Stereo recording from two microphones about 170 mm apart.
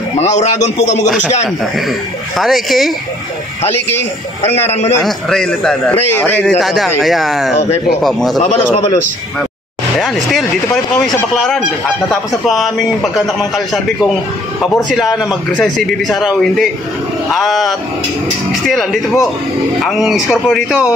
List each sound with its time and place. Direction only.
0.2 s speech: 45° left (ahead or behind)
2.3 s a man's voice: centre (ahead or behind)
4.6 s a man's voice: 35° left (ahead or behind)
5.0 s a man's voice: 5° left (ahead or behind)
11.3 s a man's voice: centre (ahead or behind)
15.0 s a man's voice: centre (ahead or behind)